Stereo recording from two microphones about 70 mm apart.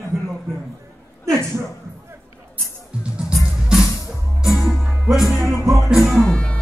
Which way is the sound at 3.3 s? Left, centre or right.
Centre.